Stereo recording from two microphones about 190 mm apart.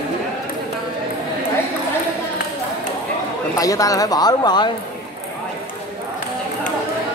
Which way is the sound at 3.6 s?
20° left (ahead or behind).